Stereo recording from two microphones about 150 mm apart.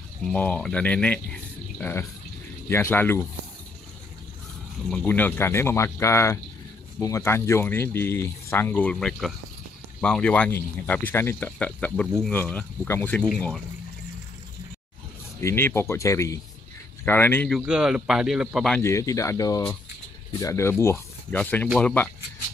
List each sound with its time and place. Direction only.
0.3 s speech: 5° left (ahead or behind)
4.9 s speech: 10° left (ahead or behind)
15.4 s speech: 15° left (ahead or behind)
17.5 s a man's voice: 5° right (ahead or behind)
18.8 s speech: 20° left (ahead or behind)